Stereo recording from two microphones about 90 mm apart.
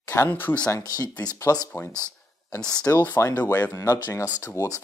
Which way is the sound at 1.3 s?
35° left (ahead or behind).